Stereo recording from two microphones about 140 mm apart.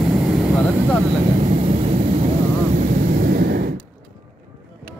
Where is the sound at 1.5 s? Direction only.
45° right (ahead or behind).